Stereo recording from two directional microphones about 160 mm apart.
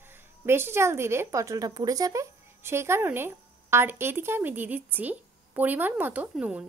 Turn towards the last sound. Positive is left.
turn(degrees=-5)  # may be behind; listen again after turning